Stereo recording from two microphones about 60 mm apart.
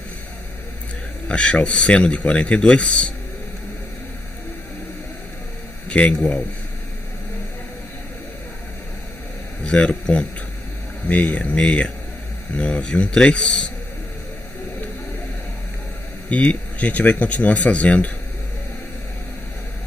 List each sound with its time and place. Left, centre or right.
1.3 s a man's voice: centre
5.9 s a sound: left
6.1 s a man's voice: centre
9.6 s a man's voice: centre
16.3 s speech: left